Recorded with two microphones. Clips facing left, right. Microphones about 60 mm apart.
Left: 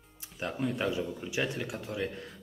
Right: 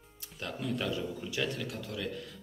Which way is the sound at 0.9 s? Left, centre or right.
Centre.